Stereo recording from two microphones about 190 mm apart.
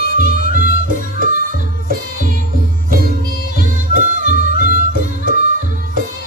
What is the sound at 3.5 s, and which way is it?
Music, 45° right (ahead or behind).